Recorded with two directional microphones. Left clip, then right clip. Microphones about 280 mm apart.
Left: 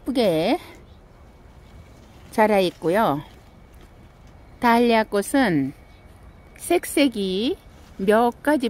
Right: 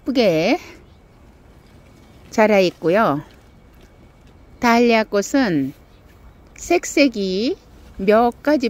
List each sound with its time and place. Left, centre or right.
0.0 s speech: centre
2.3 s speech: centre
4.6 s a woman's voice: centre